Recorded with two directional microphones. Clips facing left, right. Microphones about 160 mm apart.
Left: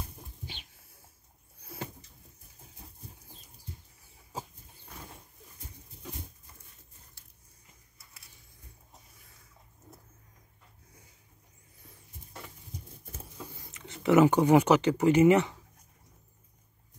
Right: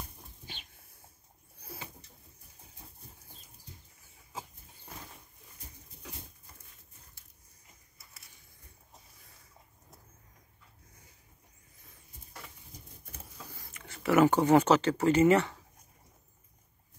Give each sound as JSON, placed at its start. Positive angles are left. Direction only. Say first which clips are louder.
{"t": 13.6, "sound": "speech", "louder": "left 3 dB", "side_deg": 20}